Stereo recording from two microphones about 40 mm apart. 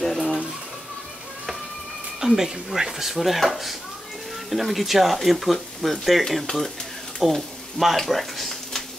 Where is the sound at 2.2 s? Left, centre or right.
Centre.